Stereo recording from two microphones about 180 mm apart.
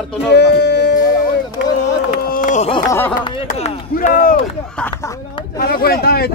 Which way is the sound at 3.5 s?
45° left (ahead or behind).